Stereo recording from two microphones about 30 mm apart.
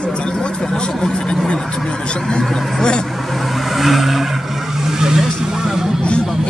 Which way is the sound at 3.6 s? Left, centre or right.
Centre.